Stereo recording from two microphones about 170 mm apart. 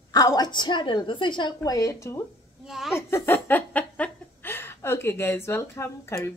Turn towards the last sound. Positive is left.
turn(degrees=15)  # may be behind; listen again after turning